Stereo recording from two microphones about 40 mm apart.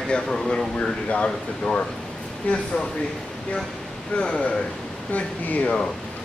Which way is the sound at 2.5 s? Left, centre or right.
Left.